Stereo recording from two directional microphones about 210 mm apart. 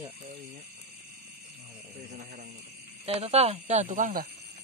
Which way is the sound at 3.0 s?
30° right (ahead or behind).